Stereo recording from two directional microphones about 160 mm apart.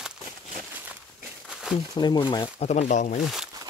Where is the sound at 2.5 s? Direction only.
45° left (ahead or behind).